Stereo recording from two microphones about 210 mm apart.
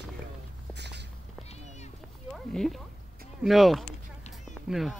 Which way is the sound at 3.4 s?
Centre (ahead or behind).